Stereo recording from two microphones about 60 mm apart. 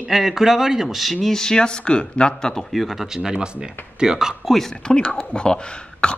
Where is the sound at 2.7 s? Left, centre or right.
Centre.